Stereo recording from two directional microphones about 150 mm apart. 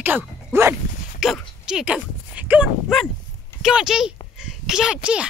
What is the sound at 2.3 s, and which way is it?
A child's voice, 10° right (ahead or behind).